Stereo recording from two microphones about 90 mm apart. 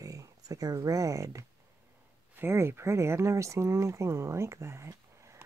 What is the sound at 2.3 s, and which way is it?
Speech, 25° right (ahead or behind).